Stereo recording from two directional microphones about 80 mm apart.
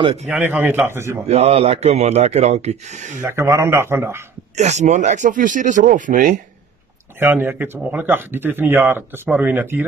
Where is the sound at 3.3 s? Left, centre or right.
Right.